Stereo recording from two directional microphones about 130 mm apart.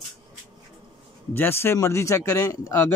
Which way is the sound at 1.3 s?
15° left (ahead or behind).